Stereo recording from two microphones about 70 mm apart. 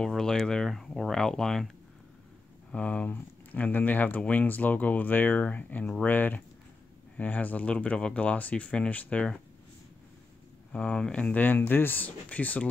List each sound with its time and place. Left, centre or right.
0.0 s speech: centre
2.7 s speech: centre
10.7 s speech: centre